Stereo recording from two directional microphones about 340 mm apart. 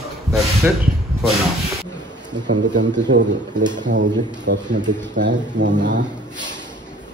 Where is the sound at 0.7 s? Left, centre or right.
Centre.